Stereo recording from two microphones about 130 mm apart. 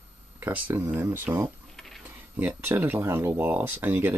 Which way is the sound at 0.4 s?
15° right (ahead or behind).